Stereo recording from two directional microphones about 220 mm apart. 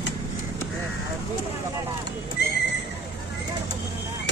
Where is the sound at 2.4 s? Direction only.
45° left (ahead or behind).